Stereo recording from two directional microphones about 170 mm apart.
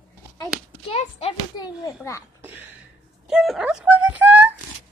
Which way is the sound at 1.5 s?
20° left (ahead or behind).